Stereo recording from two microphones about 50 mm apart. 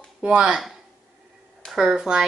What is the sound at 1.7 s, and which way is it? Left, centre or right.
Speech, centre.